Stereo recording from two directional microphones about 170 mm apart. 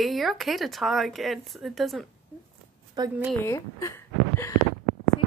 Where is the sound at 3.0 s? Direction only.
25° right (ahead or behind).